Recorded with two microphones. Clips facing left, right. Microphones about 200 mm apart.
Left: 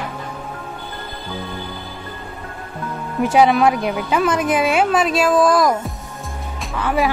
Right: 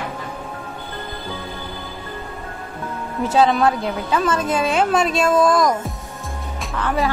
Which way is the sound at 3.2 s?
10° left (ahead or behind).